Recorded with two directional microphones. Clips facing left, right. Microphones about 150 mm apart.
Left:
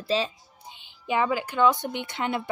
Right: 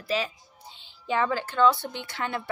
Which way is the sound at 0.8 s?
15° left (ahead or behind).